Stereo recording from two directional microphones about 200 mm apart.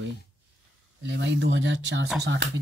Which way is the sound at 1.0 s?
60° right (ahead or behind).